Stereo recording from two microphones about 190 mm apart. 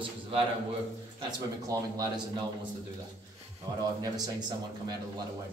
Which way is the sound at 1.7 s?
20° right (ahead or behind).